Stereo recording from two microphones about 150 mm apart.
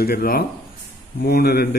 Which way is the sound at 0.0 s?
85° left.